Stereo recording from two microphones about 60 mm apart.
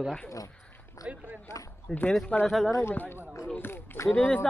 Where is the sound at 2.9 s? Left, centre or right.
Left.